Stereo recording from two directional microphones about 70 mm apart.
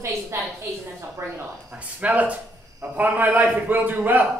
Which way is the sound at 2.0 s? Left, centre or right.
Right.